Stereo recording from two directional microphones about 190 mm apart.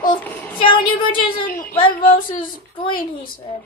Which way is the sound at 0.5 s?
25° left (ahead or behind).